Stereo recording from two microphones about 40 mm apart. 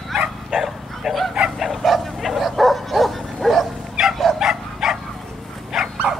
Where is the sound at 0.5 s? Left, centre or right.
Centre.